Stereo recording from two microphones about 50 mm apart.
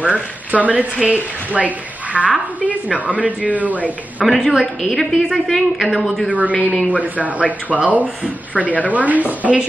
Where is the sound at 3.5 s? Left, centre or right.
Right.